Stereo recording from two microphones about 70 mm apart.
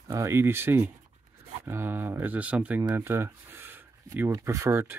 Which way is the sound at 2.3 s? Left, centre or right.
Right.